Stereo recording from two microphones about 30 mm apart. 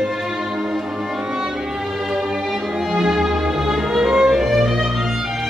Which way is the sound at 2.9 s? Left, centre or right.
Centre.